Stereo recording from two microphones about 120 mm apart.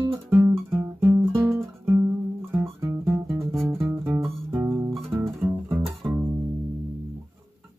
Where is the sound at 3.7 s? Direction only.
20° right (ahead or behind).